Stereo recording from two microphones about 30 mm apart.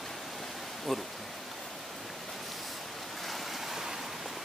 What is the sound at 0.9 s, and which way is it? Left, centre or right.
Speech, centre.